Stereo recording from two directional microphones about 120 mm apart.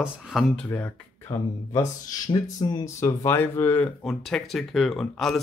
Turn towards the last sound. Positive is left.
turn(degrees=0)  # may be behind; listen again after turning